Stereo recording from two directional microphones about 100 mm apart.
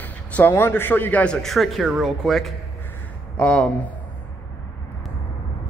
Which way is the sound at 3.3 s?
10° left (ahead or behind).